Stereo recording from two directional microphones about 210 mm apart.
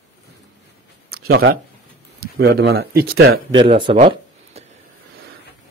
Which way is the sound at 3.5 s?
25° right (ahead or behind).